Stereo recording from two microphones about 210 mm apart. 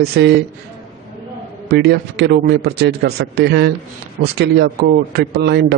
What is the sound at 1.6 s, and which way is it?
A man's voice, 50° right (ahead or behind).